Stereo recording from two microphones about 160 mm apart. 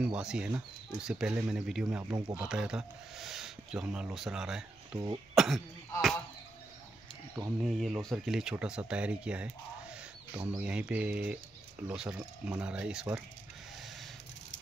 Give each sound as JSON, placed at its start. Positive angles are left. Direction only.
{"t": 0.0, "sound": "speech", "side_deg": -5}
{"t": 2.0, "sound": "speech", "side_deg": -25}
{"t": 2.3, "sound": "speech", "side_deg": -5}
{"t": 7.6, "sound": "speech", "side_deg": 0}